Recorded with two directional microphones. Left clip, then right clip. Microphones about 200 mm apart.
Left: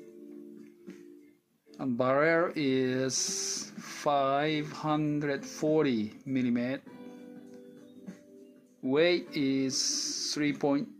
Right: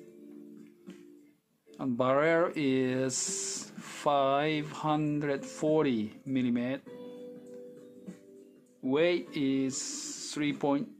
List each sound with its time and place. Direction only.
1.8 s speech: 5° left (ahead or behind)
8.8 s speech: 10° left (ahead or behind)
9.3 s speech: 35° right (ahead or behind)
9.7 s speech: 15° right (ahead or behind)
10.3 s speech: 5° left (ahead or behind)